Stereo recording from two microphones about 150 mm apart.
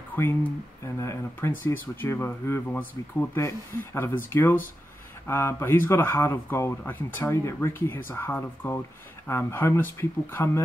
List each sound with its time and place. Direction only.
0.1 s speech: 15° left (ahead or behind)